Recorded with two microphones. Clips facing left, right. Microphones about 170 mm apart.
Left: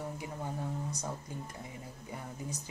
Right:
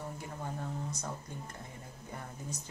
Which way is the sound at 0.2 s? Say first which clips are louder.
Left 2 dB; 10° left (ahead or behind).